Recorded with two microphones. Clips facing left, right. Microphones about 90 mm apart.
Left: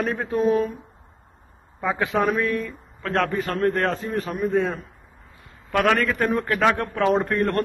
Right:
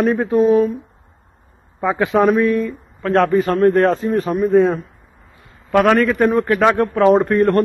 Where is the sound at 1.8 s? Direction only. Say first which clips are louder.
Right 6 dB; 25° right (ahead or behind).